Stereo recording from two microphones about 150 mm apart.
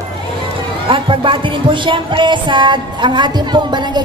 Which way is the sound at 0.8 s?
35° right (ahead or behind).